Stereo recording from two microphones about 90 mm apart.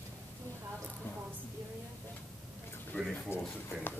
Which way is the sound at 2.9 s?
20° left (ahead or behind).